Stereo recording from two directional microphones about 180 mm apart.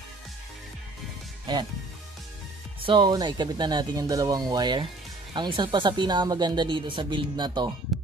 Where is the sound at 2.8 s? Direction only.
25° right (ahead or behind).